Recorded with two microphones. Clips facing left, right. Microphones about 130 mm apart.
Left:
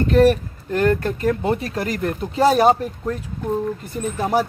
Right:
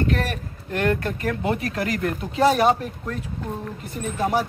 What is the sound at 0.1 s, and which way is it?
Speech, 35° left (ahead or behind).